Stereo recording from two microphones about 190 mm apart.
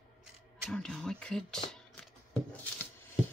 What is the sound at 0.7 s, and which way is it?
Speech, 5° left (ahead or behind).